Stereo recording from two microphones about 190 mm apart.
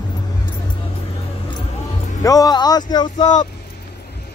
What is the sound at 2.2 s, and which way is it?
Speech, 20° left (ahead or behind).